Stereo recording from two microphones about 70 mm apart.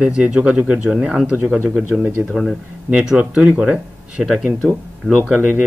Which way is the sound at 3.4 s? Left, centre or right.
Centre.